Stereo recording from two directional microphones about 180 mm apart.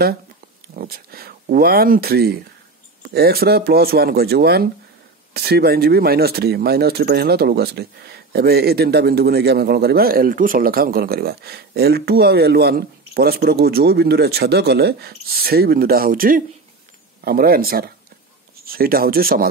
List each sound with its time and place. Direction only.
0.7 s speech: 55° right (ahead or behind)